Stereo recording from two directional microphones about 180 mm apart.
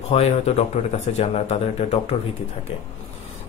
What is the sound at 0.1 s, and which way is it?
Speech, 35° left (ahead or behind).